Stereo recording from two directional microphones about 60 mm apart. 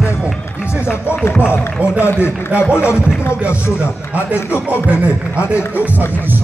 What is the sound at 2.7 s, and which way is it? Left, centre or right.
Speech, left.